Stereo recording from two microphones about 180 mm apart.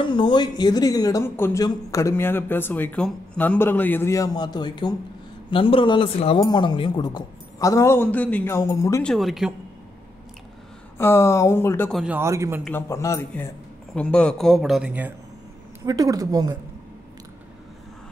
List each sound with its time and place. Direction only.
0.0 s a man's voice: 25° left (ahead or behind)
9.0 s a man's voice: centre (ahead or behind)
11.0 s speech: 15° left (ahead or behind)
11.9 s a man's voice: 5° right (ahead or behind)
12.2 s a man's voice: 15° right (ahead or behind)
12.6 s a man's voice: 15° left (ahead or behind); by 15.1 s 10° right (ahead or behind)
15.8 s a woman's voice: 20° right (ahead or behind)